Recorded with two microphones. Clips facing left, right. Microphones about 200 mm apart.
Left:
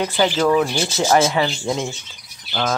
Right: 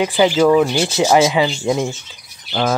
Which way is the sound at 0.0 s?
15° right (ahead or behind).